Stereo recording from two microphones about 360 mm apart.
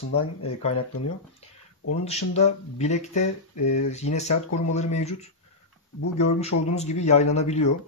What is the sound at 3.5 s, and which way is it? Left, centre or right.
Speech, left.